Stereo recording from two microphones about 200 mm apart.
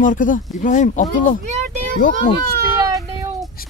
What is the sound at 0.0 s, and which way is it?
Speech, 40° left (ahead or behind).